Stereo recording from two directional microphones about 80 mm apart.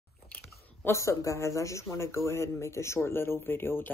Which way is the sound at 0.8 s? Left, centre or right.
Left.